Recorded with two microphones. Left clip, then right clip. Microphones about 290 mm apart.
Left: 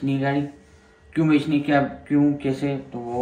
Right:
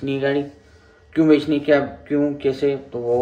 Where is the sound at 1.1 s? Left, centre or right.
Centre.